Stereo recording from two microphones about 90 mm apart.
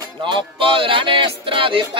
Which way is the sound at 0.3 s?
75° right (ahead or behind).